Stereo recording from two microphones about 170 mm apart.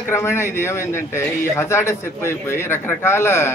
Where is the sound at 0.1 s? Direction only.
15° left (ahead or behind).